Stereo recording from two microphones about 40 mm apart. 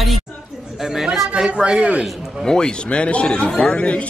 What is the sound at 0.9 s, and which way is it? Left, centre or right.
Speech, centre.